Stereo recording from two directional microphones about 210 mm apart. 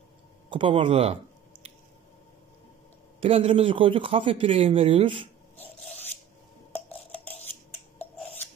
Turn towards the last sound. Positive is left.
turn(degrees=10)  # may be behind; listen again after turning